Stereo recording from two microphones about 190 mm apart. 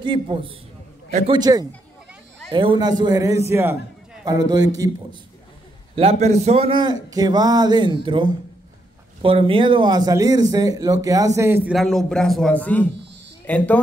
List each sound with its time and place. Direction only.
0.0 s speech: 25° right (ahead or behind)
5.9 s speech: 35° right (ahead or behind); by 11.7 s 10° right (ahead or behind)
11.7 s a man's voice: centre (ahead or behind)